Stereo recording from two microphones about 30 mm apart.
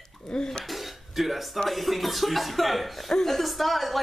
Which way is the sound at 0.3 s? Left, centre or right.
Centre.